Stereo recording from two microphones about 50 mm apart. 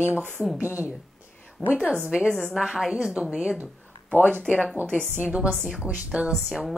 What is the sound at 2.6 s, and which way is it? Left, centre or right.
Speech, centre.